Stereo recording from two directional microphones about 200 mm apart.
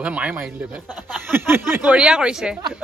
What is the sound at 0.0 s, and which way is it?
Speech, 5° right (ahead or behind).